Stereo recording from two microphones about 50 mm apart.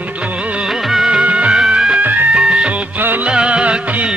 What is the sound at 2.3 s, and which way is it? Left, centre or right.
Music, centre.